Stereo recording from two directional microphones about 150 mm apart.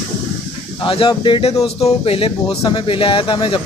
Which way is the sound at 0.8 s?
35° left (ahead or behind).